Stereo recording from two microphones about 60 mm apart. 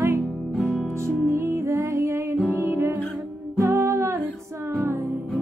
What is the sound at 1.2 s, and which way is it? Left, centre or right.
Music, right.